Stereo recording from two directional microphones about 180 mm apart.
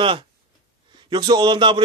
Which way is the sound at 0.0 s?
30° right (ahead or behind).